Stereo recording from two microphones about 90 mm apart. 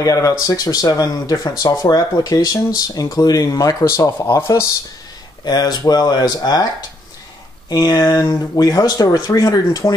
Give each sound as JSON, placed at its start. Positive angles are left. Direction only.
{"t": 0.0, "sound": "speech", "side_deg": 40}
{"t": 5.4, "sound": "speech", "side_deg": 50}
{"t": 7.7, "sound": "speech", "side_deg": 50}